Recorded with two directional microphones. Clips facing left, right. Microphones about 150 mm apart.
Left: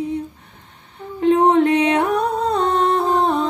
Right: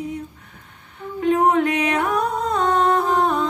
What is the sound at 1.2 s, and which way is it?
Music, 30° left (ahead or behind).